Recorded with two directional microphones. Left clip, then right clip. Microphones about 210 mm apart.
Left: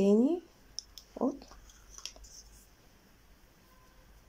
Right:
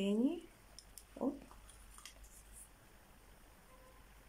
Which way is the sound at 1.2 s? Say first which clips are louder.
Left 7 dB; 25° left (ahead or behind).